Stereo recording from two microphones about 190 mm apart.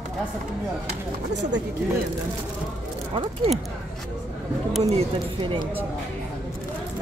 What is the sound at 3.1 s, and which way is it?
Speech, 25° right (ahead or behind).